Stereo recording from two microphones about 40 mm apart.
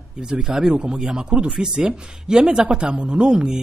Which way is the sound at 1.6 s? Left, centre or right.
Centre.